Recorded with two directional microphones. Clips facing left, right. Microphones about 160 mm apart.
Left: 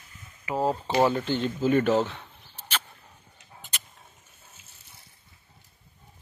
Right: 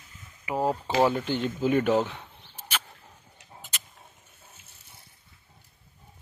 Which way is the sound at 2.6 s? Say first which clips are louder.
Left 1 dB; 10° right (ahead or behind).